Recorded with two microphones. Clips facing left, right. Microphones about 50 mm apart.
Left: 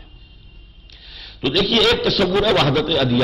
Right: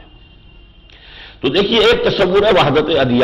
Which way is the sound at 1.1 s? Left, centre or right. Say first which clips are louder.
Right 5 dB; right.